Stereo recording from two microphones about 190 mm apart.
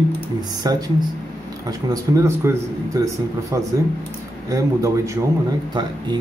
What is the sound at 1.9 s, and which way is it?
Speech, 15° right (ahead or behind).